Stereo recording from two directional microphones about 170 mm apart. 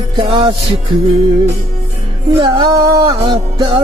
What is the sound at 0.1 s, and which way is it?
Music, 30° right (ahead or behind).